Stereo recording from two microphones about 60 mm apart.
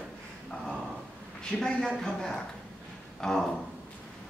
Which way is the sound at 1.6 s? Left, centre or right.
Centre.